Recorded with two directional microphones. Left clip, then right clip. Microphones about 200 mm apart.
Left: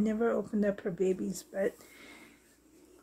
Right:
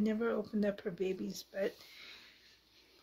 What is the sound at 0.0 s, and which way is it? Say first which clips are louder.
Speech: left 5 dB; 50° left (ahead or behind).